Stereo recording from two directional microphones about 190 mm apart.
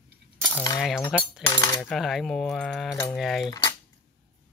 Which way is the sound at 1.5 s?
15° left (ahead or behind).